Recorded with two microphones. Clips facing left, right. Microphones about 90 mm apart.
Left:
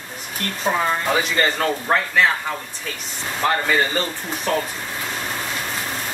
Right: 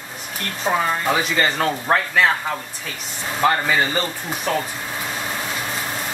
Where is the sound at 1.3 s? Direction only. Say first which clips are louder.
Even; 5° right (ahead or behind).